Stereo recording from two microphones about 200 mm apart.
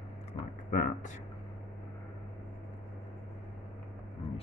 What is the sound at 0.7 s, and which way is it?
Speech, 45° left (ahead or behind).